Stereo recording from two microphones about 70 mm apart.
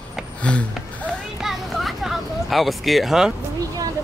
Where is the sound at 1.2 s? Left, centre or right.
Centre.